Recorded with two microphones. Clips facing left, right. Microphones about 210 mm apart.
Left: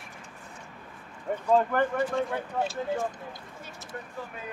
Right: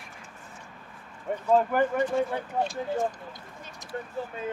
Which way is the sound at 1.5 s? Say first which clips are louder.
Right 1 dB; 5° right (ahead or behind).